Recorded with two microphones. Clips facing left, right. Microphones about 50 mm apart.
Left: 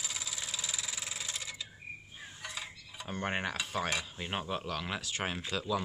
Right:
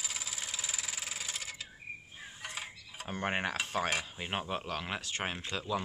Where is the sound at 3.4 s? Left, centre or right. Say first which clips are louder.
Right 1 dB; right.